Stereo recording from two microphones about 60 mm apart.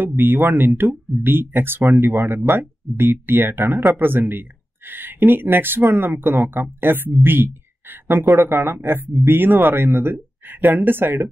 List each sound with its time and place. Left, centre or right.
0.0 s speech: right